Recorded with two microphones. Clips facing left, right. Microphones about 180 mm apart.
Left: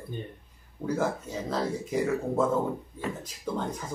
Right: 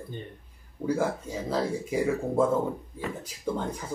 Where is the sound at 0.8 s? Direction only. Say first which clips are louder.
Right 1 dB; 10° right (ahead or behind).